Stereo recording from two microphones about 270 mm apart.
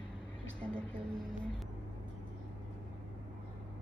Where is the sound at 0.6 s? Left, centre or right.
Centre.